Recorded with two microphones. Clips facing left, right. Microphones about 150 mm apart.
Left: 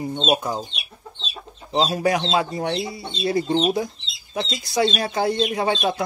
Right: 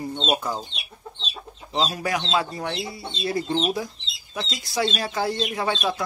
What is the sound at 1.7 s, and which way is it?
Speech, 30° left (ahead or behind).